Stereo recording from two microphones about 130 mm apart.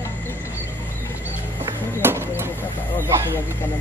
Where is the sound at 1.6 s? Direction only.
20° right (ahead or behind).